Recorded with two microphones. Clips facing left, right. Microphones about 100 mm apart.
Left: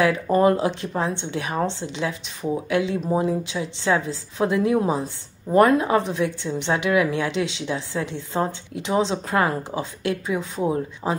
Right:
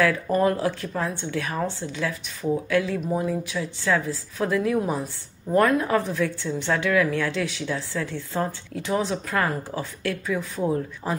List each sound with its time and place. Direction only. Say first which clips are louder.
0.0 s speech: left 3 dB; 20° left (ahead or behind)